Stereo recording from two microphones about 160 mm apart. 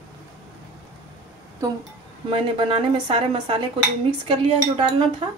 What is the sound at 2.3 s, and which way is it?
A woman's voice, 30° right (ahead or behind).